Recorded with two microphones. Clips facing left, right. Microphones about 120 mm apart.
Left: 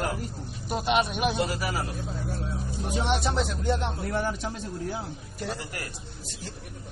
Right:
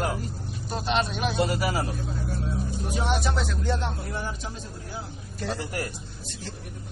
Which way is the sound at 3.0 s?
25° left (ahead or behind).